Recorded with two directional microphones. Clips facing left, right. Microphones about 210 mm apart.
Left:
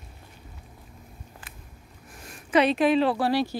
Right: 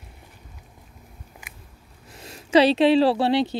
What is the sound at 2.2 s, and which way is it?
Speech, 25° right (ahead or behind).